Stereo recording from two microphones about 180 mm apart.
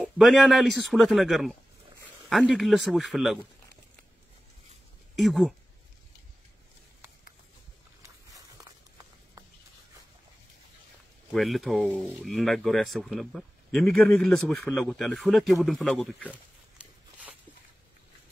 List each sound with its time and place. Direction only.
0.0 s speech: centre (ahead or behind)
5.1 s speech: centre (ahead or behind)
8.3 s walk: 20° right (ahead or behind)
11.3 s speech: centre (ahead or behind)
16.3 s dog: 5° right (ahead or behind)